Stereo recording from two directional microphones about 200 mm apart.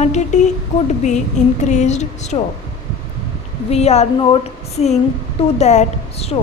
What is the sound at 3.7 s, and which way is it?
Speech, 30° left (ahead or behind).